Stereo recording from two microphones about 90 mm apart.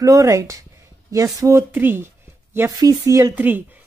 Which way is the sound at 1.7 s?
25° right (ahead or behind).